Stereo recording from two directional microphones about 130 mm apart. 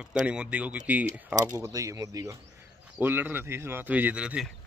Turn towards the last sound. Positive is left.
turn(degrees=-10)  # may be behind; listen again after turning